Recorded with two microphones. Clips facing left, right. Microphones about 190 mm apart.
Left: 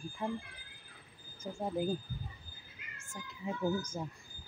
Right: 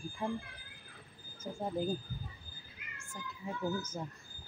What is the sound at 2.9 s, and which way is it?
Speech, 15° left (ahead or behind).